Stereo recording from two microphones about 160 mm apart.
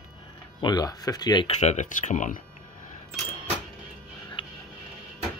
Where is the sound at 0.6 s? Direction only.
25° left (ahead or behind).